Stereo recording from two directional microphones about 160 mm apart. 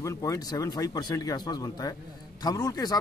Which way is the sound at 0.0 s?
20° left (ahead or behind).